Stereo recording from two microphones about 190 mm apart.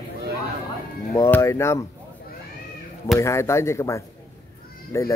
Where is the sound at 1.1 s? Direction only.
15° left (ahead or behind).